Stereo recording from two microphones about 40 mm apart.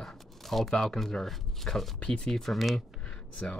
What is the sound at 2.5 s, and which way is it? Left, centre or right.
Speech, centre.